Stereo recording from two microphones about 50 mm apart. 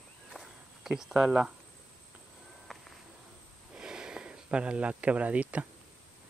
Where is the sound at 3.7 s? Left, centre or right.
Centre.